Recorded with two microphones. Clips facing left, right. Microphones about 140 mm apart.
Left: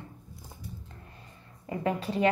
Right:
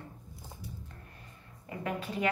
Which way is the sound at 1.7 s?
30° left (ahead or behind).